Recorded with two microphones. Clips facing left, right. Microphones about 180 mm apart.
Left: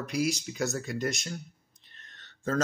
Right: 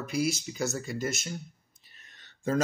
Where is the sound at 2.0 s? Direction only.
10° right (ahead or behind).